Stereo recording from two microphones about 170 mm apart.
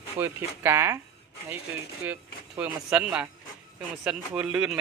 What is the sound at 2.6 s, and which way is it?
Speech, 5° right (ahead or behind).